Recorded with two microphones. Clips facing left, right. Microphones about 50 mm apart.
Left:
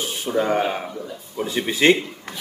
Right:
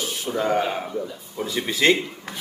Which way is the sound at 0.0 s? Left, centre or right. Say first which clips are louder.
Left 1 dB; left.